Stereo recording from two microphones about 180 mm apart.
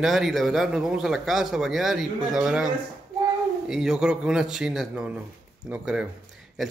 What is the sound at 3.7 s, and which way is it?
Speech, 5° right (ahead or behind).